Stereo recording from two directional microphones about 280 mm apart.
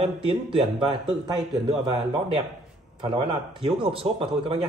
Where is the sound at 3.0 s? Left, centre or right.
Centre.